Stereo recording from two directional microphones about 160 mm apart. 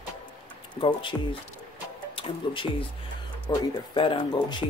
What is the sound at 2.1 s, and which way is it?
Speech, 30° left (ahead or behind).